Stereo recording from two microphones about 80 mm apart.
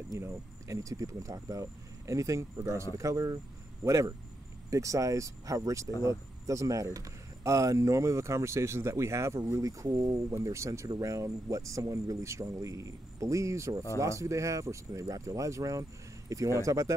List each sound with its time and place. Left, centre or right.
0.2 s speech: right